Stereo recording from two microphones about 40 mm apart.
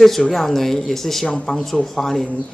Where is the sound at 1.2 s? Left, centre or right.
Centre.